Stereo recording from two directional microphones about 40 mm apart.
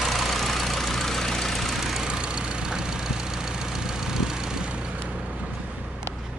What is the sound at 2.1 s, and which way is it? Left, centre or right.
Vehicle, right.